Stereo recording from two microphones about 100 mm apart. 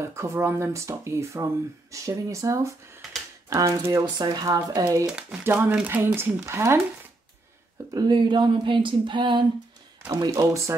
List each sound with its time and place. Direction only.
0.1 s speech: 30° right (ahead or behind)
4.2 s a sound: 45° right (ahead or behind)
4.5 s speech: 40° right (ahead or behind)
5.1 s speech: 15° right (ahead or behind)
7.9 s a sound: 45° right (ahead or behind)
10.2 s speech: 30° right (ahead or behind)